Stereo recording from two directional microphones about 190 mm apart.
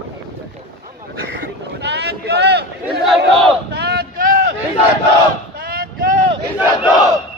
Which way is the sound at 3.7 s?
60° right (ahead or behind).